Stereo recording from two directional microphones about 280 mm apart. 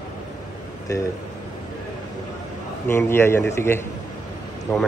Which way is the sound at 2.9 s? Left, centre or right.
Centre.